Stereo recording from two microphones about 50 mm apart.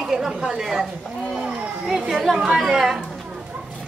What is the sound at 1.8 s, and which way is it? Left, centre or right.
Speech, centre.